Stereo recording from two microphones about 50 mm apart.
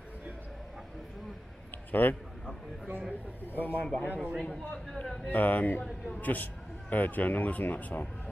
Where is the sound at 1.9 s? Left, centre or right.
Left.